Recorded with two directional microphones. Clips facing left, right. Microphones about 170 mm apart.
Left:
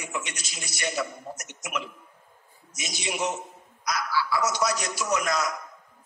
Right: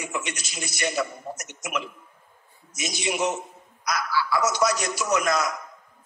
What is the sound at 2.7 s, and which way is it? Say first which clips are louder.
Speech: right 4 dB; 60° right (ahead or behind).